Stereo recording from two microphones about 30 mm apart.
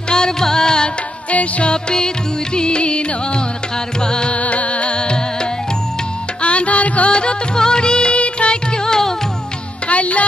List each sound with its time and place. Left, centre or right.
0.1 s music: left
1.3 s music: left
1.9 s music: left
4.3 s music: left
4.9 s music: left
6.4 s music: left
7.1 s music: left
8.7 s music: left
9.8 s music: left